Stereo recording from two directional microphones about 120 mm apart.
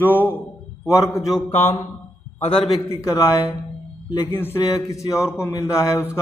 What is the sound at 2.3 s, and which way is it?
Speech, 55° left (ahead or behind).